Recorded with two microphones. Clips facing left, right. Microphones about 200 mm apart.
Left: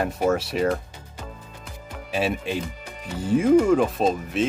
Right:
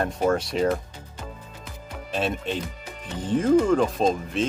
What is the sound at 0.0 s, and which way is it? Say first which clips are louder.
Speech: left 1 dB; 5° left (ahead or behind).